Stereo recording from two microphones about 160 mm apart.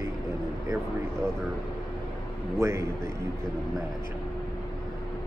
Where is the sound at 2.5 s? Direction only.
15° right (ahead or behind).